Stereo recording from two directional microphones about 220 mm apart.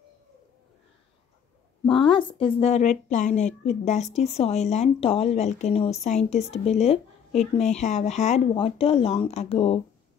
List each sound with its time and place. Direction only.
1.9 s speech: 25° left (ahead or behind)